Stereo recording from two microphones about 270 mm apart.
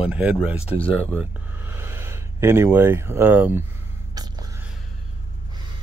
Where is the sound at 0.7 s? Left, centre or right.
Left.